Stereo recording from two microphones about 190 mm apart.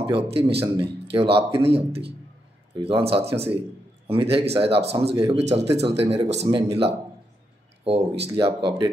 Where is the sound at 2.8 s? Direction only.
30° right (ahead or behind).